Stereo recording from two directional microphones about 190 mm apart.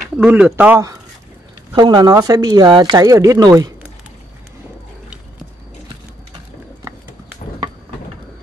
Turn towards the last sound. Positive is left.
turn(degrees=-15)  # may be behind; listen again after turning